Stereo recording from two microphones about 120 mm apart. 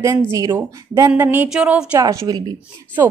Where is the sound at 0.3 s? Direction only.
25° right (ahead or behind).